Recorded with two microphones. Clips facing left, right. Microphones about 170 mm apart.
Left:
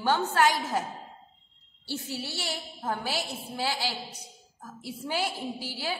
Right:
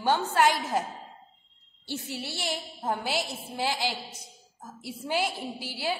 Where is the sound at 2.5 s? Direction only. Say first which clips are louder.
Right 3 dB; 20° right (ahead or behind).